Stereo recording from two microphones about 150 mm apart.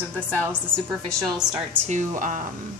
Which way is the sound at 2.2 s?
60° right (ahead or behind).